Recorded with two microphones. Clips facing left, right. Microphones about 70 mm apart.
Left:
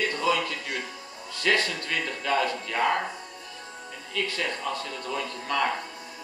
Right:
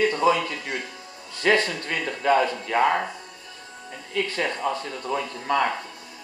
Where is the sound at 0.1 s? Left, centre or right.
Right.